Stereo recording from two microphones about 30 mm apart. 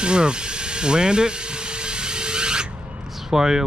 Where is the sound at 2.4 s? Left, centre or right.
Right.